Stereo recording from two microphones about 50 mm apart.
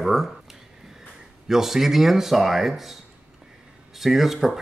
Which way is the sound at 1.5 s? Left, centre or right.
Centre.